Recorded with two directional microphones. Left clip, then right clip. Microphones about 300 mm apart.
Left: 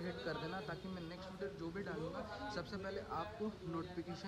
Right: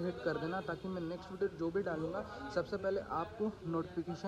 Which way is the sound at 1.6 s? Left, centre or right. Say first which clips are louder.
Right 9 dB; centre.